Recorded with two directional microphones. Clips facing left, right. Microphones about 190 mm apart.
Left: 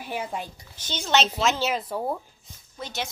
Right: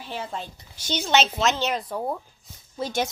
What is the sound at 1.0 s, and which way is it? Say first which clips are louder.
A woman's voice: right 1 dB; 5° right (ahead or behind).